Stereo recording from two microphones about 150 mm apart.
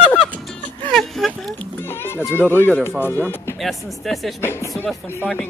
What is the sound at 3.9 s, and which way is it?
Speech, centre (ahead or behind).